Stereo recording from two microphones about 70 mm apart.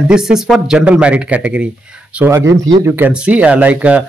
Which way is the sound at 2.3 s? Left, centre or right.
Right.